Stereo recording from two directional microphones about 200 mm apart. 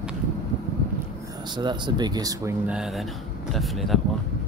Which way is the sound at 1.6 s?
20° right (ahead or behind).